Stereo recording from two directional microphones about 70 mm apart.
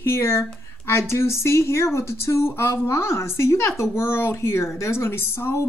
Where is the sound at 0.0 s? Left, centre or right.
Left.